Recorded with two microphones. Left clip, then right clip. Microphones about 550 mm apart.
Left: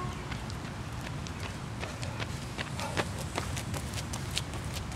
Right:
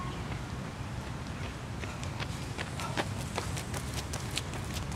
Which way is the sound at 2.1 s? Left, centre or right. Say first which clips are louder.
Left 1 dB; left.